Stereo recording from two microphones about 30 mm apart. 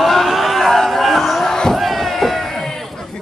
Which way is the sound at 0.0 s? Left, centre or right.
Centre.